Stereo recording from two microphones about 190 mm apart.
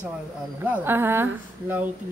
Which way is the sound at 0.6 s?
10° right (ahead or behind).